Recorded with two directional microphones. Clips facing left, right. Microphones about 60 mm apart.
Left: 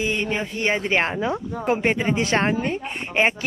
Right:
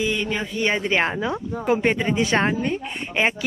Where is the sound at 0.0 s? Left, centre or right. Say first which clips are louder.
Even; centre.